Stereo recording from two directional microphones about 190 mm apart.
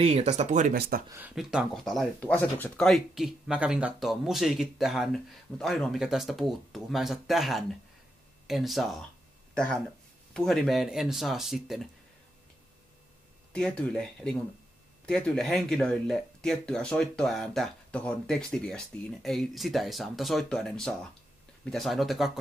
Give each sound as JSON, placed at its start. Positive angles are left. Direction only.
{"t": 0.0, "sound": "speech", "side_deg": -35}
{"t": 0.7, "sound": "speech", "side_deg": -60}
{"t": 1.1, "sound": "speech", "side_deg": -5}
{"t": 13.5, "sound": "speech", "side_deg": 5}